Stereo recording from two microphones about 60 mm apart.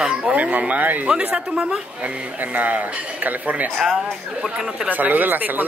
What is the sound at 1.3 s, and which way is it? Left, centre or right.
Speech, centre.